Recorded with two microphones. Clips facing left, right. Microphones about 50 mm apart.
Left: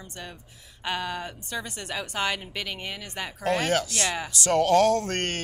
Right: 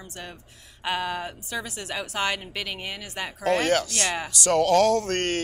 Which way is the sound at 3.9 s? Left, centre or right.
Right.